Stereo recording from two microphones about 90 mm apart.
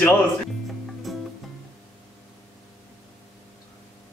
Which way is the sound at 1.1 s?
Centre (ahead or behind).